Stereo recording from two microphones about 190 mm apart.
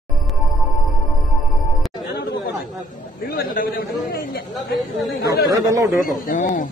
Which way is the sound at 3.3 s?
50° left (ahead or behind).